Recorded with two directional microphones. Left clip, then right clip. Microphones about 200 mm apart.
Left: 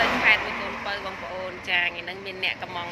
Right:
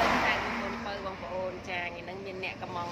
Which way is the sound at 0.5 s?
45° left (ahead or behind).